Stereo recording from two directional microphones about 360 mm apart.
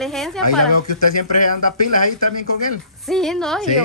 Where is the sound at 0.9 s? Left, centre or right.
Left.